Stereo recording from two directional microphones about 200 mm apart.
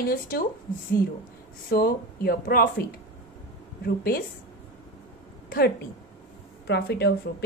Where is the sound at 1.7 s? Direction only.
50° left (ahead or behind).